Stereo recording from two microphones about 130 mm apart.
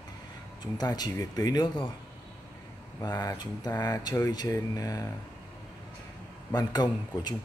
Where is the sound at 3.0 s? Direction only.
30° left (ahead or behind).